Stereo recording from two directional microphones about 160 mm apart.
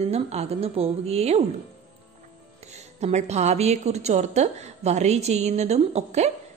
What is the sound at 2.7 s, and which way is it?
A woman's voice, 45° right (ahead or behind).